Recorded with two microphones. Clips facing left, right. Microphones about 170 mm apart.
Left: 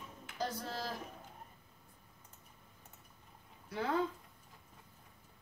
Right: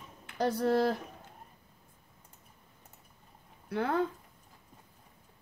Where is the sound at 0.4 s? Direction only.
60° right (ahead or behind).